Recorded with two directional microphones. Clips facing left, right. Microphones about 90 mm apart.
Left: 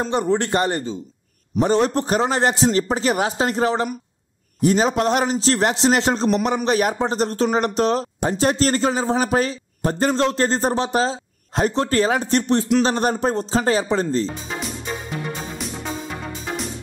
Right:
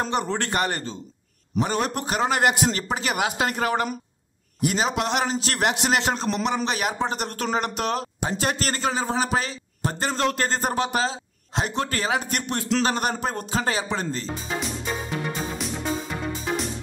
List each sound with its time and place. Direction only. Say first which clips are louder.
0.3 s a man's voice: left 6 dB; 25° left (ahead or behind)
1.6 s a man's voice: left 7 dB; 30° left (ahead or behind)